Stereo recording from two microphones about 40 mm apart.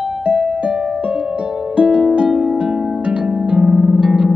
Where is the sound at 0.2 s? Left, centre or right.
Right.